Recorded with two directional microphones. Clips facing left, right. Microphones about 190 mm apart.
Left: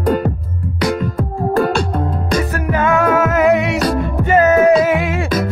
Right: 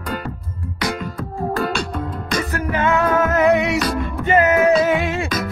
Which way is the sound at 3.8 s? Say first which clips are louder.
Left 4 dB; 40° left (ahead or behind).